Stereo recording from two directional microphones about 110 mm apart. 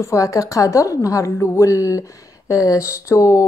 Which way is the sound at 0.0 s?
30° left (ahead or behind).